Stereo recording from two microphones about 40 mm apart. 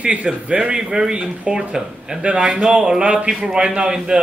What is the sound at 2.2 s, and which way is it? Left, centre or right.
Speech, right.